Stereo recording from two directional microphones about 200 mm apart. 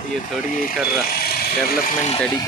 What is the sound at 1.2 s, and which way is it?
Speech, 50° left (ahead or behind).